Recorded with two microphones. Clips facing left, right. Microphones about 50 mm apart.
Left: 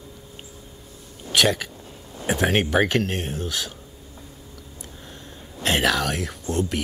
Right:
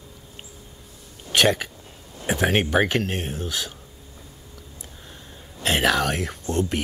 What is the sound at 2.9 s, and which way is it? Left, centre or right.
Speech, centre.